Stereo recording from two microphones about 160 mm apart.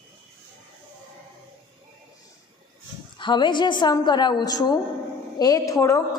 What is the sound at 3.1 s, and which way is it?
A woman's voice, 30° left (ahead or behind).